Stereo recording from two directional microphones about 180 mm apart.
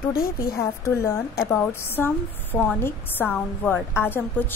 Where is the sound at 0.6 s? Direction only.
15° left (ahead or behind).